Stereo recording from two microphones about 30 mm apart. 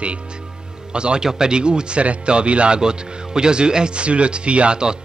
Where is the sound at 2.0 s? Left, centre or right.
Right.